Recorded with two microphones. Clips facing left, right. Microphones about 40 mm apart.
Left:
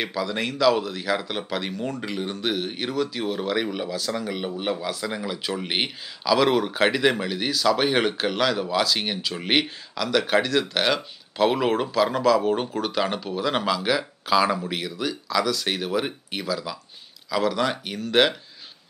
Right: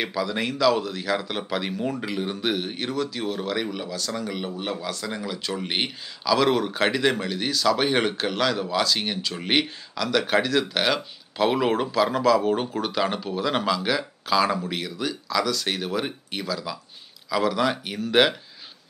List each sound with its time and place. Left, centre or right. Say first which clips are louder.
0.0 s speech: even; centre